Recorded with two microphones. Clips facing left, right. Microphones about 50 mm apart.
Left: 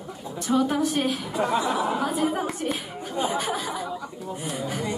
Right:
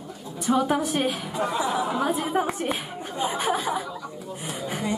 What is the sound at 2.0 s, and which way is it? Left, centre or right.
Speech, right.